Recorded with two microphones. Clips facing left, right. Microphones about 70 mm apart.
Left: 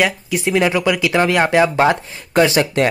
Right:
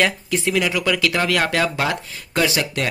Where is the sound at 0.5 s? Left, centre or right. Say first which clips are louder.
Left 5 dB; left.